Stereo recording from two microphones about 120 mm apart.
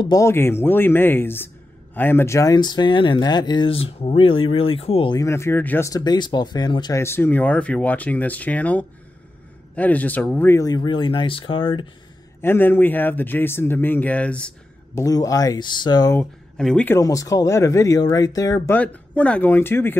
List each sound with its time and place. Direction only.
0.0 s speech: 30° left (ahead or behind); by 5.1 s 55° left (ahead or behind)
5.1 s speech: 25° left (ahead or behind)
5.9 s speech: 35° left (ahead or behind)
7.0 s speech: 20° left (ahead or behind)
10.5 s speech: 30° left (ahead or behind)
12.4 s speech: 20° left (ahead or behind)
15.0 s speech: 30° left (ahead or behind)
16.5 s speech: 5° left (ahead or behind)
16.9 s speech: 30° left (ahead or behind)
18.7 s speech: 15° left (ahead or behind)